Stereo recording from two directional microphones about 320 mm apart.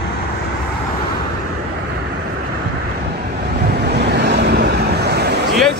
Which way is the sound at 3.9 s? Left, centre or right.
Right.